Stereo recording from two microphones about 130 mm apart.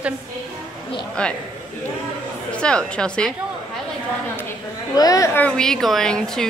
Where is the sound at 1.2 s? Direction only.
10° left (ahead or behind).